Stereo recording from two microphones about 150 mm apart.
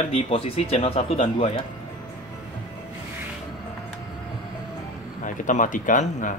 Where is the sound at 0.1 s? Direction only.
40° left (ahead or behind).